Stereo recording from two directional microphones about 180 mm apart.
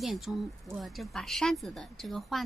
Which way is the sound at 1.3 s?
Centre (ahead or behind).